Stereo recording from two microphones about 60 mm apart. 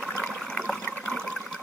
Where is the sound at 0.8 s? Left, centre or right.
Left.